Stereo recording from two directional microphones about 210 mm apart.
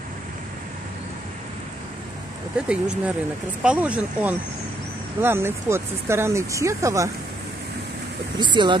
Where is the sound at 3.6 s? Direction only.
5° right (ahead or behind).